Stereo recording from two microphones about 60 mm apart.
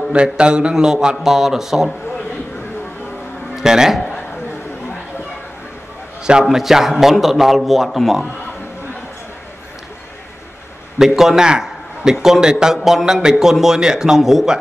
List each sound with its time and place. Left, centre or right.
0.1 s a man's voice: centre
3.5 s a man's voice: centre
6.5 s a man's voice: centre
11.0 s a man's voice: centre